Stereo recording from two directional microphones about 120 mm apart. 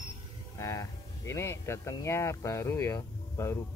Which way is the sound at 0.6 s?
30° left (ahead or behind).